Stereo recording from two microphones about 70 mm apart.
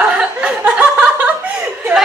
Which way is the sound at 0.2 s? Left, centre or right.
Centre.